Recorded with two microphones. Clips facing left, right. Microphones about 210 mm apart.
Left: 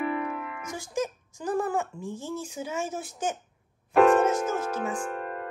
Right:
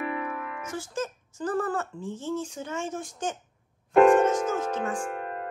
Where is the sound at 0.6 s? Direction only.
10° left (ahead or behind).